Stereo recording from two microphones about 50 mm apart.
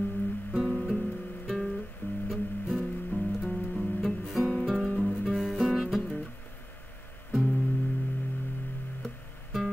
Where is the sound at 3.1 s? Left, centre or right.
Left.